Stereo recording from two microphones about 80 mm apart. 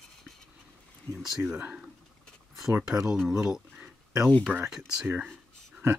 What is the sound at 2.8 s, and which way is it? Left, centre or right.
Speech, centre.